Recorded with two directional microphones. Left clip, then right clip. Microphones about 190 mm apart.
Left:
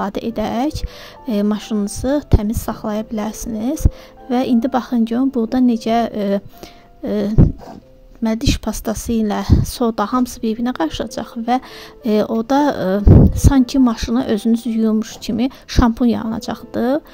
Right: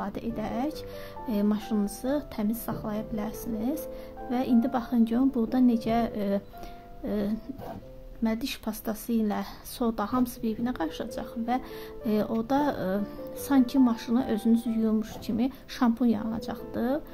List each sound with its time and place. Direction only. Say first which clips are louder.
0.0 s a woman's voice: left 12 dB; 45° left (ahead or behind)